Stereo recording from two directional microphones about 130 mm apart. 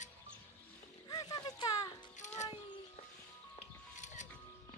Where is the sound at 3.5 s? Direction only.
65° left (ahead or behind).